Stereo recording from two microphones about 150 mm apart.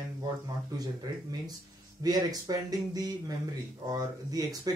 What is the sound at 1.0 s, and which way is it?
Speech, 25° right (ahead or behind).